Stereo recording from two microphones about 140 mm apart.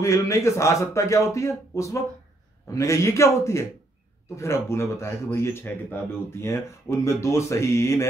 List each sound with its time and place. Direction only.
0.0 s speech: 20° left (ahead or behind)